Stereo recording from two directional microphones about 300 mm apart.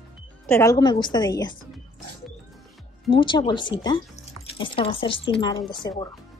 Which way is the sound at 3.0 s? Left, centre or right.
Centre.